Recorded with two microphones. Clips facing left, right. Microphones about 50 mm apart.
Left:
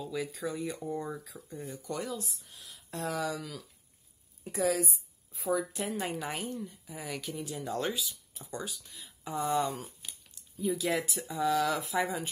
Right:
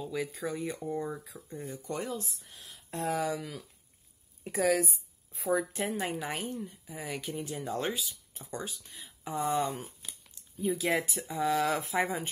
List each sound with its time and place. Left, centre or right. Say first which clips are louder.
0.0 s speech: right 1 dB; right
0.8 s a woman's voice: right 3 dB; centre
1.3 s speech: even; left
1.8 s speech: right 1 dB; right
4.6 s a woman's voice: right 2 dB; right
5.5 s a woman's voice: right 1 dB; right
6.0 s a woman's voice: right 1 dB; centre
6.4 s a woman's voice: even; centre
6.9 s a woman's voice: right 1 dB; centre
7.2 s a woman's voice: right 2 dB; right
10.6 s speech: right 1 dB; right